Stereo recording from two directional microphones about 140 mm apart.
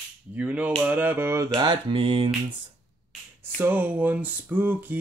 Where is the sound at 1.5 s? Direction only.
35° right (ahead or behind).